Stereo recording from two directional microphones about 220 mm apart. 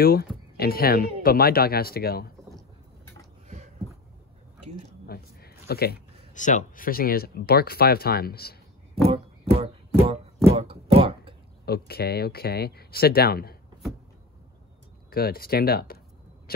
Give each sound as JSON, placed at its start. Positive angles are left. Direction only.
{"t": 0.0, "sound": "speech", "side_deg": 40}
{"t": 3.4, "sound": "a sound", "side_deg": -30}
{"t": 5.0, "sound": "speech", "side_deg": 45}
{"t": 9.0, "sound": "speech", "side_deg": -25}
{"t": 10.5, "sound": "a sound", "side_deg": -25}
{"t": 11.6, "sound": "speech", "side_deg": 45}
{"t": 15.0, "sound": "speech", "side_deg": 45}